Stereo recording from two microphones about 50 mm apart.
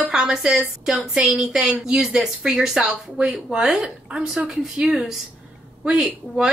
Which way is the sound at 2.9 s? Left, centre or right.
Right.